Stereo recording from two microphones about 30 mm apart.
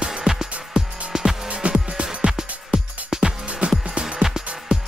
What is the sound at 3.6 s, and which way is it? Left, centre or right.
Music, right.